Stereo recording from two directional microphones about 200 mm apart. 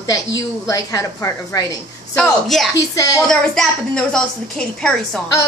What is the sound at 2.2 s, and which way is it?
Speech, centre (ahead or behind).